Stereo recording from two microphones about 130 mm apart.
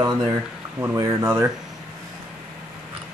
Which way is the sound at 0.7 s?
20° right (ahead or behind).